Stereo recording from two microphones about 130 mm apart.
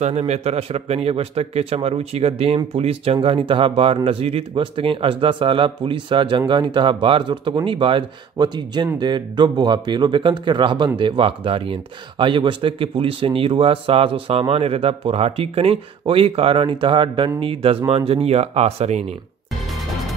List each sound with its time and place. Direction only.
0.2 s speech: 50° right (ahead or behind)